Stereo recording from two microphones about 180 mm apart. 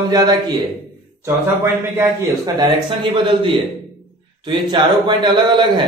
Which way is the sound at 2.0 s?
20° right (ahead or behind).